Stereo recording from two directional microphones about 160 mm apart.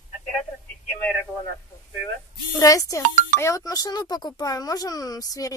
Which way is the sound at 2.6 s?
20° left (ahead or behind).